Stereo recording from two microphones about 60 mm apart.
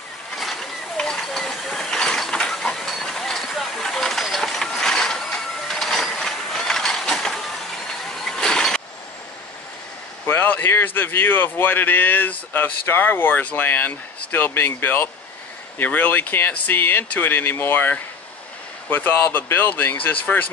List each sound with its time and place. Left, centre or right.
0.4 s a sound: centre
0.9 s mechanisms: centre
8.0 s vehicle: centre
10.2 s speech: left